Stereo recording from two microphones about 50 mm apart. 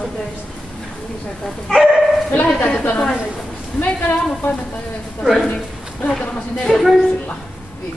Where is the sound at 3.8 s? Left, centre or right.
Left.